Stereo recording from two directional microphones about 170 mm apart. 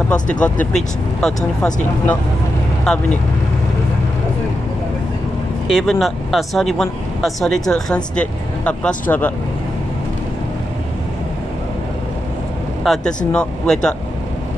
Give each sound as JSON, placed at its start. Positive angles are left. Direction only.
{"t": 0.1, "sound": "speech", "side_deg": 5}
{"t": 5.7, "sound": "speech", "side_deg": 0}
{"t": 12.8, "sound": "speech", "side_deg": 5}